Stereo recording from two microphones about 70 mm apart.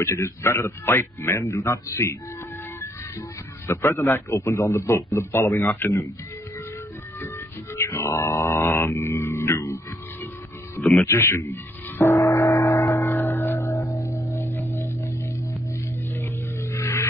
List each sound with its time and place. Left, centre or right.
0.0 s a man's voice: left
7.2 s music: left
8.5 s a sound: left
11.1 s speech: left
11.5 s gong: left
13.2 s music: left
13.9 s music: left
16.2 s a sound: left